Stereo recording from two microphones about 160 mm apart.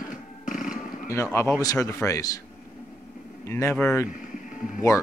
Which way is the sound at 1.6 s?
20° left (ahead or behind).